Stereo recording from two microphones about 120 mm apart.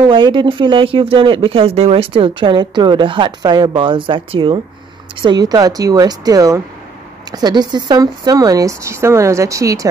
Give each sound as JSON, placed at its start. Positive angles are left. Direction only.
{"t": 0.0, "sound": "a woman's voice", "side_deg": -40}